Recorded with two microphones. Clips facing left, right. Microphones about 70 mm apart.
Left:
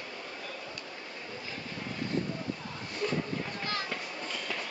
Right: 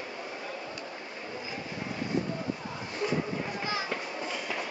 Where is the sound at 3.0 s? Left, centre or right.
Centre.